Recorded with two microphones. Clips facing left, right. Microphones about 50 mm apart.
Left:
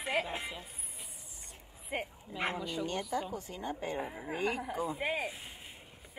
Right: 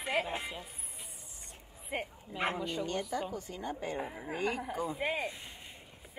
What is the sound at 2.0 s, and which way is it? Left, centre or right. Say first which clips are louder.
Speech: right 3 dB; centre.